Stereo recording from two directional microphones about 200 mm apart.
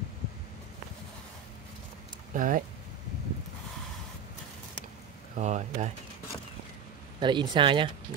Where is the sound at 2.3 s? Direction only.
40° right (ahead or behind).